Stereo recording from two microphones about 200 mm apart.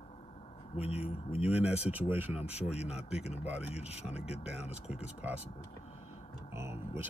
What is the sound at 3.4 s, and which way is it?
Speech, 5° right (ahead or behind).